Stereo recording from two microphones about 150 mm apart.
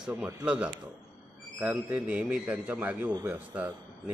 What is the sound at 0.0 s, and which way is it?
A man's voice, 5° right (ahead or behind).